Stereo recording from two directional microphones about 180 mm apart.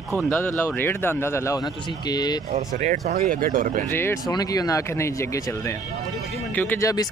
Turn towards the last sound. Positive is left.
turn(degrees=20)  # may be behind; listen again after turning